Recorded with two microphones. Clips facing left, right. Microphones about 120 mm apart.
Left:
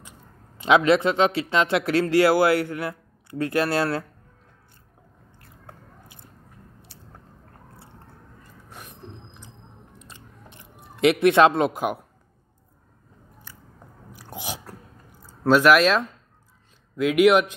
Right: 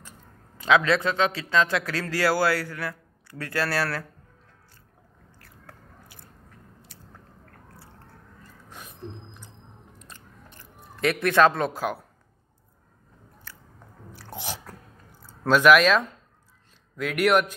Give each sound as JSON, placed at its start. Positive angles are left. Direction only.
{"t": 0.6, "sound": "a man's voice", "side_deg": 25}
{"t": 5.4, "sound": "biting", "side_deg": 20}
{"t": 10.8, "sound": "a man's voice", "side_deg": 25}
{"t": 14.1, "sound": "biting", "side_deg": 10}
{"t": 15.2, "sound": "speech", "side_deg": 5}
{"t": 16.9, "sound": "speech", "side_deg": 10}